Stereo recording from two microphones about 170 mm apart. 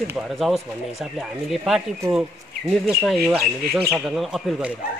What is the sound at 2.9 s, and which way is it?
Speech, 5° right (ahead or behind).